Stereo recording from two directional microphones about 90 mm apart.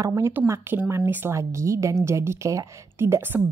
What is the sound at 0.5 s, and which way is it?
A woman's voice, 30° right (ahead or behind).